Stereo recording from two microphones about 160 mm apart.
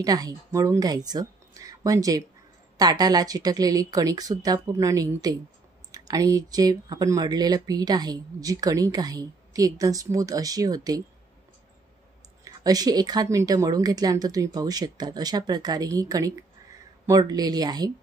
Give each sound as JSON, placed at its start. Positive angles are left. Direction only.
{"t": 0.0, "sound": "speech", "side_deg": -25}
{"t": 12.4, "sound": "speech", "side_deg": -25}